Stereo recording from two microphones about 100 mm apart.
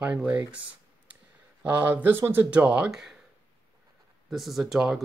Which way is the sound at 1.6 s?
15° right (ahead or behind).